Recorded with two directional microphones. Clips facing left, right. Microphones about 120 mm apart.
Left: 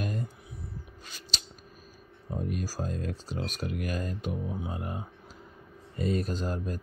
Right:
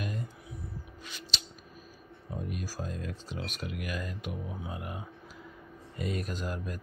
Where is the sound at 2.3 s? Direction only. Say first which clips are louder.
Left 4 dB; 35° left (ahead or behind).